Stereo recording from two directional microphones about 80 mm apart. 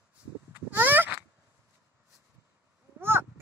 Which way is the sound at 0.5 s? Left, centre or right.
Right.